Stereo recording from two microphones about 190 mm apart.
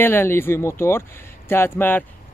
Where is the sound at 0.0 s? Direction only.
10° left (ahead or behind).